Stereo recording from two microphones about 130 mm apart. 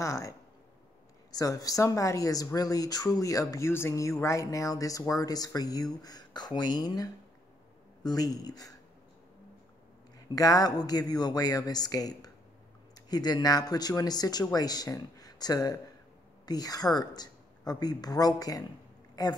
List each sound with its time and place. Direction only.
0.0 s speech: 25° left (ahead or behind)
10.3 s a woman's voice: 30° left (ahead or behind)